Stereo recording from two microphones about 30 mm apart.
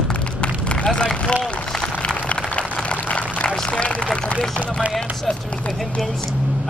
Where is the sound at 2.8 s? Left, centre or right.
Left.